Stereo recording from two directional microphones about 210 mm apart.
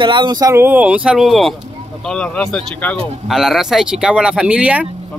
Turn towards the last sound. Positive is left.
turn(degrees=-5)  # may be behind; listen again after turning